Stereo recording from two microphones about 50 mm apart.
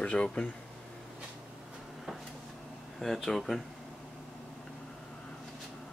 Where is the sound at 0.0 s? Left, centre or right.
Left.